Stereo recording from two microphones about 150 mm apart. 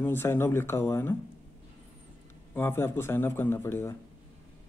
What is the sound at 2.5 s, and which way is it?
Speech, 15° left (ahead or behind).